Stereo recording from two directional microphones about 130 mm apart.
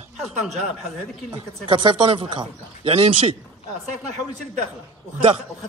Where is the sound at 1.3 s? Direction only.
35° right (ahead or behind).